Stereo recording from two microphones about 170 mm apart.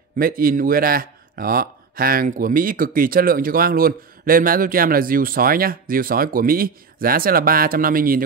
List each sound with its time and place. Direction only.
0.2 s speech: 55° right (ahead or behind)